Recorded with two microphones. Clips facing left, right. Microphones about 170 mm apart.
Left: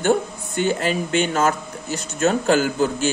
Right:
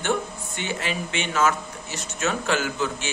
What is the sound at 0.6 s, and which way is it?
A man's voice, 40° left (ahead or behind).